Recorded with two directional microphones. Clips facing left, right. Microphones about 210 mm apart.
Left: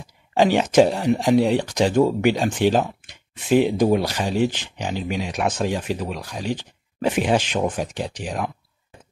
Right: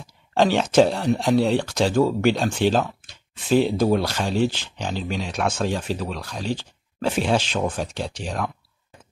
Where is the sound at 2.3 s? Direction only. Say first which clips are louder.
Left 1 dB; 10° left (ahead or behind).